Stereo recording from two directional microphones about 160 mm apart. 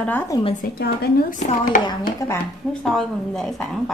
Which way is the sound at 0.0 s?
10° left (ahead or behind).